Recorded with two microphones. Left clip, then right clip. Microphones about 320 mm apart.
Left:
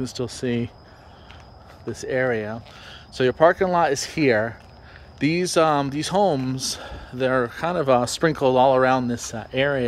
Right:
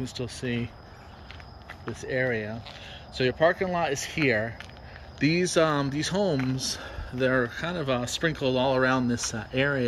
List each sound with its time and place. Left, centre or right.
0.0 s speech: centre
2.0 s speech: centre